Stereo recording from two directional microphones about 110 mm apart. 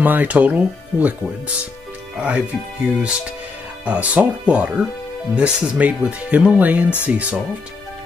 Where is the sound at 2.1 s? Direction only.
10° right (ahead or behind).